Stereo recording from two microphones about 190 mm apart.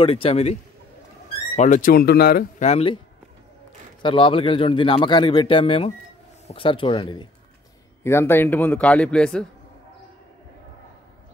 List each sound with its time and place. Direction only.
0.0 s a man's voice: 30° left (ahead or behind)
1.6 s speech: 45° left (ahead or behind)
2.6 s a man's voice: 30° left (ahead or behind)
4.0 s speech: 25° left (ahead or behind)
8.0 s a man's voice: 15° left (ahead or behind)